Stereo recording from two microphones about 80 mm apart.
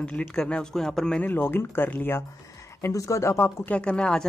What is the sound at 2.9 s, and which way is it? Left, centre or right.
Speech, left.